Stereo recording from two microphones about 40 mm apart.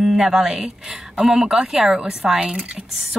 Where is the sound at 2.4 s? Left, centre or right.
Right.